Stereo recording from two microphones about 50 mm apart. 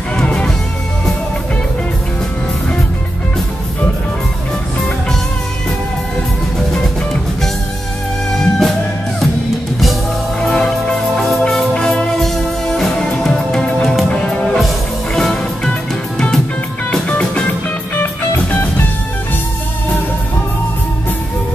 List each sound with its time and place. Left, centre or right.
0.2 s music: centre
6.7 s music: centre
8.4 s music: centre
10.4 s music: centre
17.2 s music: left
18.0 s music: left